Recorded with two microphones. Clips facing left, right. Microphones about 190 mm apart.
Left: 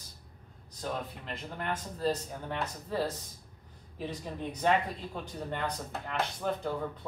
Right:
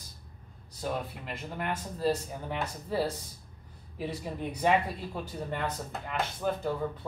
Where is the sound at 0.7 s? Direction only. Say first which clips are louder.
Right 2 dB; 10° right (ahead or behind).